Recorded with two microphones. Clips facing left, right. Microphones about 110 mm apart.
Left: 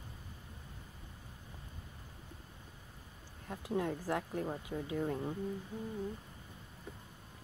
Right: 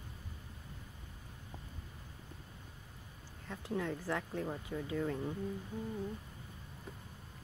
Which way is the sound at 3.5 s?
15° left (ahead or behind).